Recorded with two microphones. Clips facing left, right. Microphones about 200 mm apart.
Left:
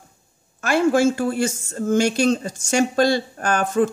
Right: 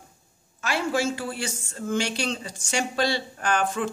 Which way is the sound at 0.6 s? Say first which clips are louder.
Left 9 dB; 50° left (ahead or behind).